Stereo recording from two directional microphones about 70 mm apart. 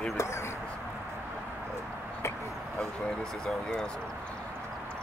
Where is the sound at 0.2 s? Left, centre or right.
Left.